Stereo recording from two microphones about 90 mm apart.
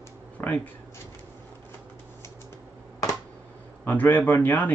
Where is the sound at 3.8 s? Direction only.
20° left (ahead or behind).